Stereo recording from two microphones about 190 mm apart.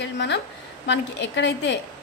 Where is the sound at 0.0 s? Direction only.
65° left (ahead or behind).